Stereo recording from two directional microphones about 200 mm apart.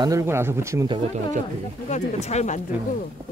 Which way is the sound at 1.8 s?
35° left (ahead or behind).